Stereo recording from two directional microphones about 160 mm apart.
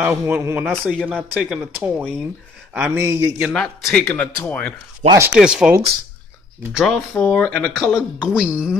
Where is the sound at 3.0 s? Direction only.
15° right (ahead or behind).